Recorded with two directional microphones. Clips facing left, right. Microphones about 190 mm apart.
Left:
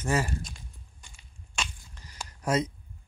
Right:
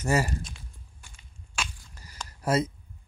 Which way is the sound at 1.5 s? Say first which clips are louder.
Right 1 dB; 10° right (ahead or behind).